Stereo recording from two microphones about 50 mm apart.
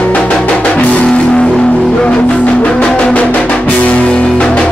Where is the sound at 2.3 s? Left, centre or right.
Left.